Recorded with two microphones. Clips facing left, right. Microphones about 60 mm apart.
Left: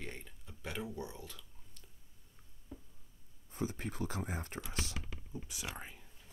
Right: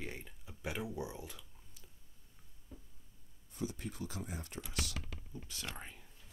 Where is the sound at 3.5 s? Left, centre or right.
Left.